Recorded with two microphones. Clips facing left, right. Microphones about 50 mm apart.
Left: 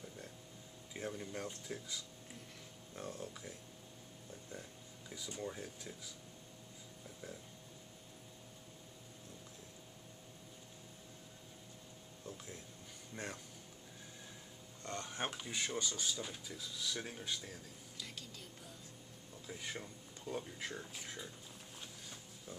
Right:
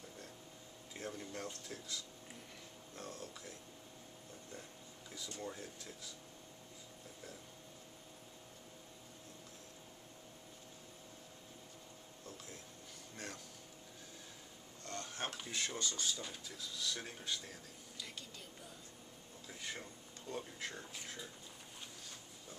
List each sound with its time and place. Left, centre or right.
0.9 s speech: centre
3.0 s speech: centre
5.1 s speech: centre
13.1 s speech: left
14.8 s speech: left; by 18.1 s centre
19.4 s speech: centre